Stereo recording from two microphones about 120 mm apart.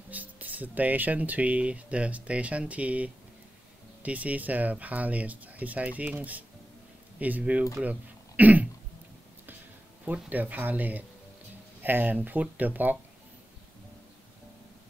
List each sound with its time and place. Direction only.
0.1 s speech: 15° right (ahead or behind)
7.7 s throat clearing: 15° right (ahead or behind)
10.0 s speech: 10° right (ahead or behind)